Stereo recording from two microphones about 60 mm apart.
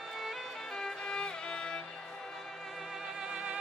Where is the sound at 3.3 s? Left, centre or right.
Centre.